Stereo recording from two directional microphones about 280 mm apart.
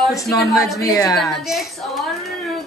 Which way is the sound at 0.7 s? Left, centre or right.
Centre.